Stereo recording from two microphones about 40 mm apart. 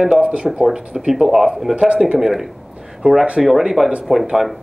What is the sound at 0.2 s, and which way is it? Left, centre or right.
Speech, right.